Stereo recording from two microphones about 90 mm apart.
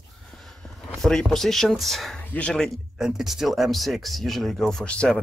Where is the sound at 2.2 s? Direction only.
20° left (ahead or behind).